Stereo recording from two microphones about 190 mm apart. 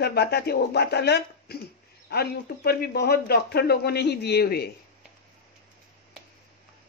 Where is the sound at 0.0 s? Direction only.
55° left (ahead or behind).